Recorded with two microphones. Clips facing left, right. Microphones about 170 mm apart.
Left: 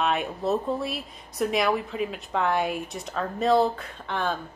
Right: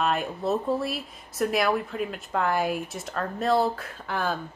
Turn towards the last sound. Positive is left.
turn(degrees=-5)  # may be behind; listen again after turning